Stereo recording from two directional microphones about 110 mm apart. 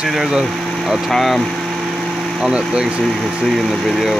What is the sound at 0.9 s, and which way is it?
Speech, centre (ahead or behind).